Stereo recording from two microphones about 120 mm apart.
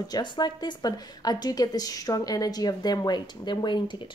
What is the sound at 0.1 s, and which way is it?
A woman's voice, 35° left (ahead or behind).